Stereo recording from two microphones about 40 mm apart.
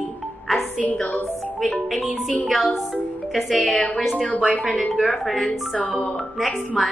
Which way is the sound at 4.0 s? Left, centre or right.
Centre.